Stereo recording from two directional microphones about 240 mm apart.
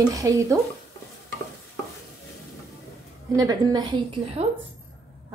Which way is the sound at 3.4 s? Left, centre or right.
Centre.